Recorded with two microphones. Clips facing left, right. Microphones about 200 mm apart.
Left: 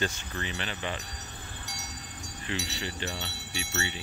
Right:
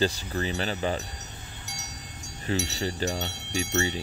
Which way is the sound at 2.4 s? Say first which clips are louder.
Right 7 dB; 40° right (ahead or behind).